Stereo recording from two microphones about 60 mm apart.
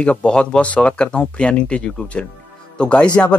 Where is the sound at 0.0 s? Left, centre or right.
Centre.